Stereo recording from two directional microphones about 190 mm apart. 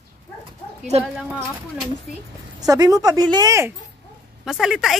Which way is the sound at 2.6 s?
20° right (ahead or behind).